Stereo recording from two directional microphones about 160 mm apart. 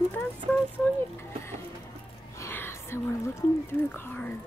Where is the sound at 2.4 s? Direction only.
15° left (ahead or behind).